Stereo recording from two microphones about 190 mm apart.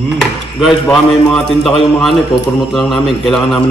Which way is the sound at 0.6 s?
Centre (ahead or behind).